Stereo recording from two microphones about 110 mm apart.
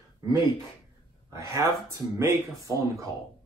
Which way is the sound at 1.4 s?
30° right (ahead or behind).